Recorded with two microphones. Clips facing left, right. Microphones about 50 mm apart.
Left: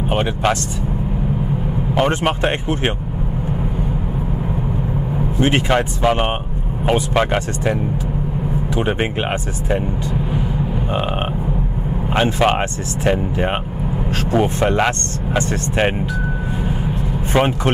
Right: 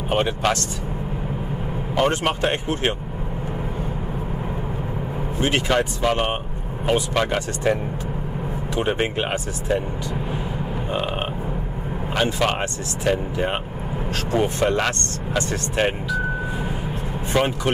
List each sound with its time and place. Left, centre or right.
0.1 s speech: centre
2.0 s speech: centre
5.4 s speech: left
8.7 s speech: centre
12.2 s speech: left